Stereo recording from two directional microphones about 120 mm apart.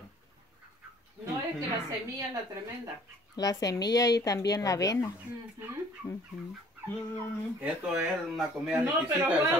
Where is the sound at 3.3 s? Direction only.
30° left (ahead or behind).